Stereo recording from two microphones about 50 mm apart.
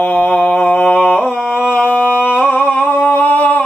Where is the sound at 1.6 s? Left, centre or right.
Left.